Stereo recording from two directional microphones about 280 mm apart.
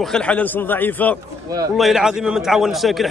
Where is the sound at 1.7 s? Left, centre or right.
Centre.